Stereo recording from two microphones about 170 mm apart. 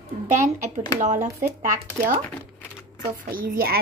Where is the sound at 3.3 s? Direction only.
55° right (ahead or behind).